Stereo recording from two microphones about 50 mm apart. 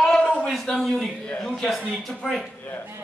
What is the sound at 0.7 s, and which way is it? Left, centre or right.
Speech, left.